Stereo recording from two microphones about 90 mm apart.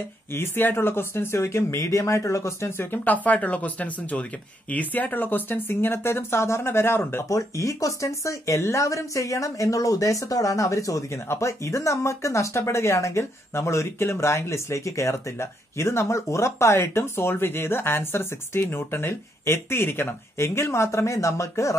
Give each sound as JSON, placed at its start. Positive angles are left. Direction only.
{"t": 0.3, "sound": "speech", "side_deg": 25}